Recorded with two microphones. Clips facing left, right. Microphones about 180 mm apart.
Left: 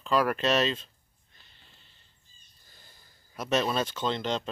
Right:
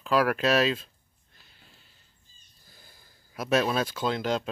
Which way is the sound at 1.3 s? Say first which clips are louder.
Right 3 dB; 5° right (ahead or behind).